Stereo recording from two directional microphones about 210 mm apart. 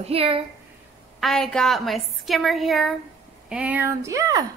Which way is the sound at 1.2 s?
Centre (ahead or behind).